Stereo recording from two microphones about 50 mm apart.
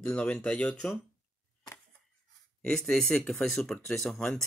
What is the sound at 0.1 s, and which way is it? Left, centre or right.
Speech, left.